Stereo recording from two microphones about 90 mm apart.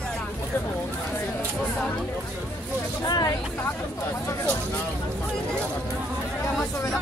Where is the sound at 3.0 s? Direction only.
50° left (ahead or behind).